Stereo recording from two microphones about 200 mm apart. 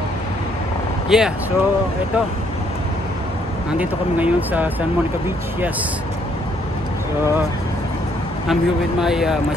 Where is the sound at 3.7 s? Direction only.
10° right (ahead or behind).